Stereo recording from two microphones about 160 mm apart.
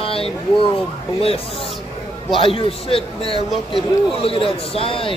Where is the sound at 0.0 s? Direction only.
35° left (ahead or behind).